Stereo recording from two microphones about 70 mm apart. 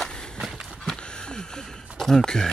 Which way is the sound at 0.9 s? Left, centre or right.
Centre.